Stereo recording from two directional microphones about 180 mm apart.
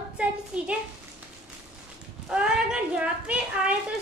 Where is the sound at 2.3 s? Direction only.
5° right (ahead or behind).